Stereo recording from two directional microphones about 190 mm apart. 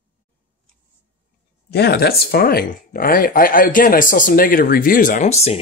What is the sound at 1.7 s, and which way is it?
Speech, 60° left (ahead or behind).